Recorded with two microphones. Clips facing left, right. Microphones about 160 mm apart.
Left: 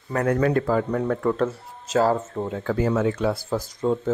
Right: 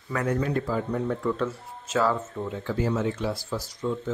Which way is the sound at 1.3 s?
40° left (ahead or behind).